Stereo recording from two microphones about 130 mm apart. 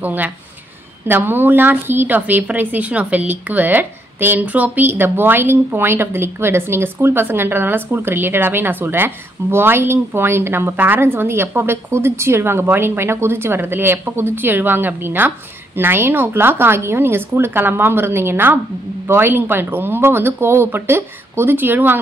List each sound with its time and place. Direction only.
0.0 s speech: 15° right (ahead or behind)